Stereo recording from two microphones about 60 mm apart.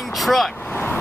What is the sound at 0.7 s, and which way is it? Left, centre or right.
Vehicle, left.